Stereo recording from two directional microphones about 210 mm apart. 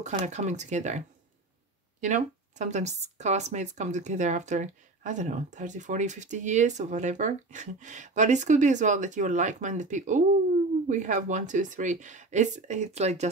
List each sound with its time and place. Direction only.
0.0 s speech: 35° right (ahead or behind)